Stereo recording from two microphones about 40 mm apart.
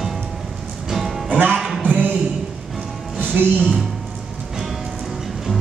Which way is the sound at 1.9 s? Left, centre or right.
Right.